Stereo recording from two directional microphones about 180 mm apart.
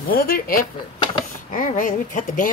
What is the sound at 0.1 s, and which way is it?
Speech, 55° left (ahead or behind).